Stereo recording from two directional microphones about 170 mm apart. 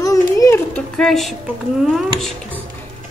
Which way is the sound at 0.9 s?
Centre (ahead or behind).